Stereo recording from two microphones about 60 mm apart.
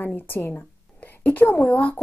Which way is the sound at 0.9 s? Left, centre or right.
Left.